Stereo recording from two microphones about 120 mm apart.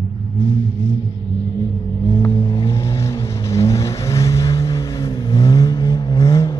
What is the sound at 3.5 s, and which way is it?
Vehicle, 25° left (ahead or behind).